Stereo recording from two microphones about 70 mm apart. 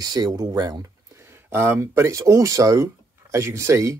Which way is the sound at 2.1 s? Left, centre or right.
Right.